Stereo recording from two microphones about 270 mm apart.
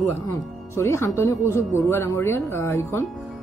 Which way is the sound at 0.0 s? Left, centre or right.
Centre.